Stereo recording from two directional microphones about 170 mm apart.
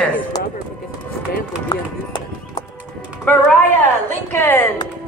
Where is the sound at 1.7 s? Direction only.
25° left (ahead or behind).